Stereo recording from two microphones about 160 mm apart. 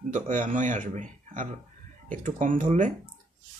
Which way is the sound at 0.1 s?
55° right (ahead or behind).